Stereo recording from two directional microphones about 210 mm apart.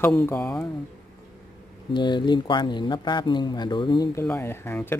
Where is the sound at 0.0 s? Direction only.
10° left (ahead or behind).